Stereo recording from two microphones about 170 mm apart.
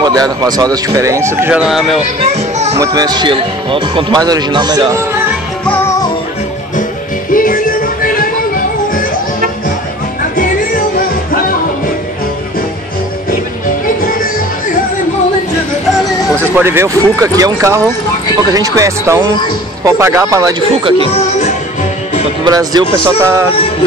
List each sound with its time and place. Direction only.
0.0 s speech: 25° right (ahead or behind); by 2.0 s centre (ahead or behind)
2.8 s speech: 20° right (ahead or behind)
7.3 s music: 55° left (ahead or behind)
10.3 s music: 50° left (ahead or behind)
16.5 s speech: 15° right (ahead or behind)
22.4 s speech: 20° right (ahead or behind)